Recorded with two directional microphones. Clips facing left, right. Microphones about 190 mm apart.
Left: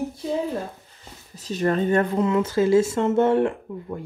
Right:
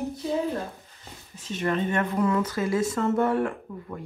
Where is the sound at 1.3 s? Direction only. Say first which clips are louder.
Left 4 dB; 40° left (ahead or behind).